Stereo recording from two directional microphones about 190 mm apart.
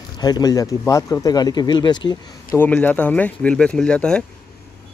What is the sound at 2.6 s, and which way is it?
Speech, 10° left (ahead or behind).